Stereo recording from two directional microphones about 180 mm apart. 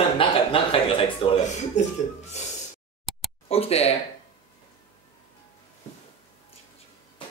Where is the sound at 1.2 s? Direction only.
35° left (ahead or behind).